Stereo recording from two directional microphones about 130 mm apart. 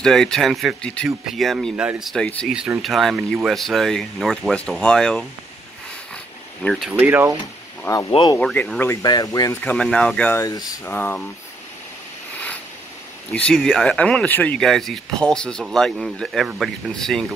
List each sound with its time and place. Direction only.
0.0 s speech: 5° left (ahead or behind)
6.6 s speech: centre (ahead or behind)
6.9 s speech: 15° right (ahead or behind)
8.1 s speech: 40° left (ahead or behind)
8.4 s speech: 5° left (ahead or behind)
9.0 s speech: 30° left (ahead or behind)
9.6 s speech: 10° left (ahead or behind)
10.4 s speech: 30° left (ahead or behind)
10.9 s speech: 10° left (ahead or behind)
13.3 s speech: 10° left (ahead or behind)